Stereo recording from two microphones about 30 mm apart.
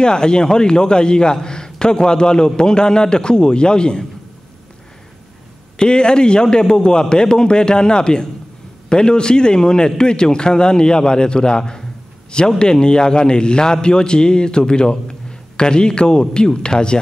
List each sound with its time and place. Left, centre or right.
0.0 s a man's voice: left
5.8 s a man's voice: left